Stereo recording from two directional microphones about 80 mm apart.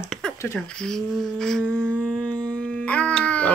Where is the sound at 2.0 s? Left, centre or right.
Centre.